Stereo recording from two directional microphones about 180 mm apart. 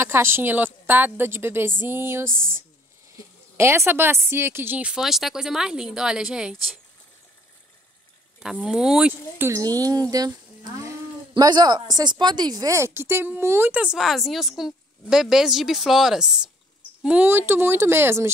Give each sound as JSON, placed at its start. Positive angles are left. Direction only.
{"t": 0.0, "sound": "speech", "side_deg": -15}
{"t": 3.5, "sound": "speech", "side_deg": -15}
{"t": 8.4, "sound": "speech", "side_deg": 0}
{"t": 9.5, "sound": "speech", "side_deg": -20}